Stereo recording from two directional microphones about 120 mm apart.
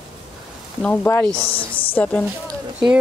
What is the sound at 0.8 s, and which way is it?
Speech, 15° left (ahead or behind).